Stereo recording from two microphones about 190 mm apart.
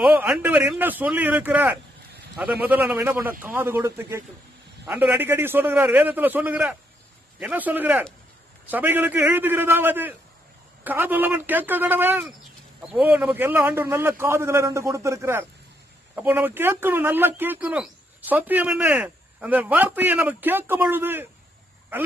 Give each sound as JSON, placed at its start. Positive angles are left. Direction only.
{"t": 0.0, "sound": "a man's voice", "side_deg": -10}